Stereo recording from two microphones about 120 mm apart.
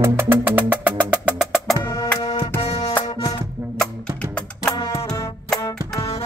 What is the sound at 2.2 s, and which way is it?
Music, 45° left (ahead or behind).